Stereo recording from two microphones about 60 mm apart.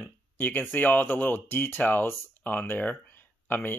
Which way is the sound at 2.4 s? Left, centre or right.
Left.